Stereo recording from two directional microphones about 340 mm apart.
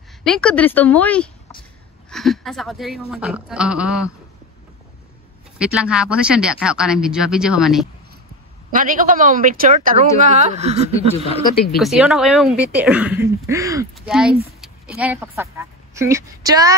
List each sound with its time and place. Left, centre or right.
0.2 s speech: centre
5.6 s speech: centre
8.7 s speech: right
11.1 s speech: centre
11.8 s speech: centre